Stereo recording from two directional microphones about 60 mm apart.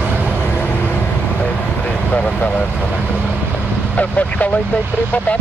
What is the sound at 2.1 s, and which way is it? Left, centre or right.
Speech, centre.